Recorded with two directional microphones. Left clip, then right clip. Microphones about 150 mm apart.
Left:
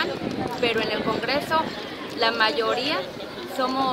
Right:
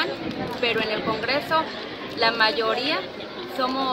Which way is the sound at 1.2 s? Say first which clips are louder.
Right 2 dB; 15° left (ahead or behind).